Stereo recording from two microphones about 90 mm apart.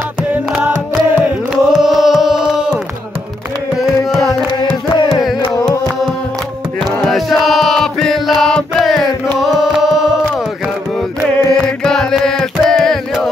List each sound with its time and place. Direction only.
0.6 s music: 15° right (ahead or behind)
1.5 s a sound: 5° right (ahead or behind)
3.8 s carnatic music: centre (ahead or behind)
7.1 s chant: centre (ahead or behind)
9.4 s carnatic music: centre (ahead or behind)
11.3 s music: 30° left (ahead or behind)
11.8 s music: 5° left (ahead or behind)